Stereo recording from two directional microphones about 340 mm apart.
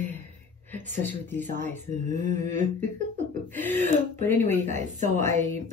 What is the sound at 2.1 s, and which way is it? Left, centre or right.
Speech, right.